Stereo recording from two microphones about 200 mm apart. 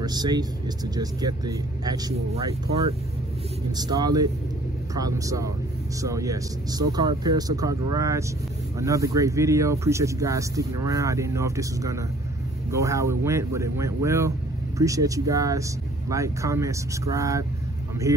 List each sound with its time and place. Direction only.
0.0 s speech: 20° right (ahead or behind)
3.7 s speech: 20° right (ahead or behind)